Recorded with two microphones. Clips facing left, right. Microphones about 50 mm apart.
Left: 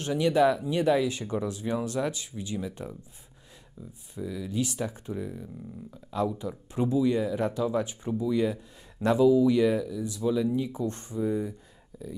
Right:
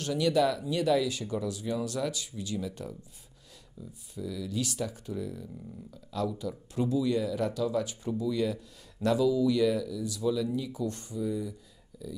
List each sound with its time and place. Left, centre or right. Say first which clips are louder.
0.0 s speech: left 3 dB; left
4.1 s speech: left 2 dB; left